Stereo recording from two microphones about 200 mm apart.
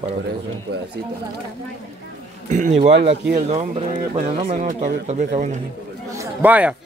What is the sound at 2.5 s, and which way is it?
Speech, 35° right (ahead or behind).